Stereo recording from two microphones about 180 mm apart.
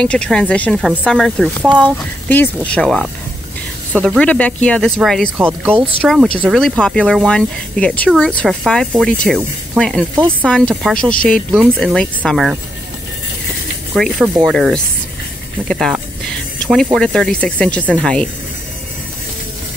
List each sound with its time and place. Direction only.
0.0 s speech: 5° left (ahead or behind)
5.5 s speech: 10° right (ahead or behind)
13.9 s speech: centre (ahead or behind)